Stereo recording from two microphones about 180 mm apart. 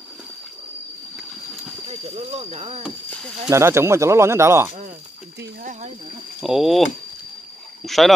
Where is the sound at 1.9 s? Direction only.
35° right (ahead or behind).